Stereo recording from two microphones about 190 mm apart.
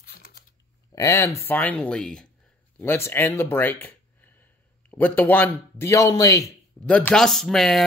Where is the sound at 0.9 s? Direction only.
15° left (ahead or behind).